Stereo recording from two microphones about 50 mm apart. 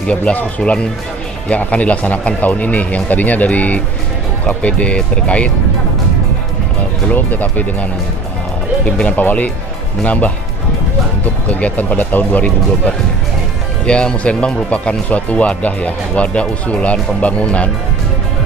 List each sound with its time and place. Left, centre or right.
0.0 s speech: left
7.1 s speech: left
8.9 s speech: left
11.4 s speech: left
13.8 s speech: left